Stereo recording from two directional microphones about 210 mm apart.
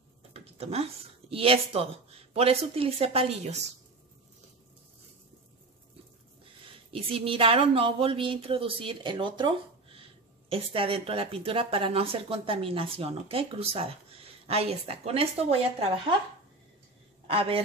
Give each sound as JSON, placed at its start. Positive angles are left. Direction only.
{"t": 0.3, "sound": "a sound", "side_deg": -30}
{"t": 1.3, "sound": "speech", "side_deg": -25}
{"t": 6.6, "sound": "speech", "side_deg": -25}
{"t": 17.3, "sound": "a man's voice", "side_deg": -25}